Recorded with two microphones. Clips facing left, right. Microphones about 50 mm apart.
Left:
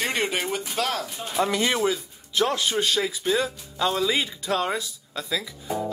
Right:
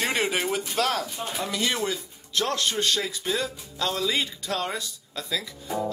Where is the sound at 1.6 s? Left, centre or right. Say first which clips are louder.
Left 3 dB; left.